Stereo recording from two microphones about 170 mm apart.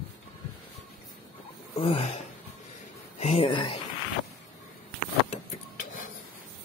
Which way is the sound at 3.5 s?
30° left (ahead or behind).